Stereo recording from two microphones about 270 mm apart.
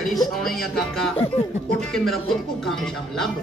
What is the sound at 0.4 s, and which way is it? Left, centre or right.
Speech, centre.